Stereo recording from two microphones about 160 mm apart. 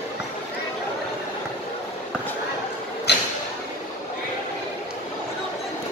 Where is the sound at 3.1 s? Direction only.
90° left.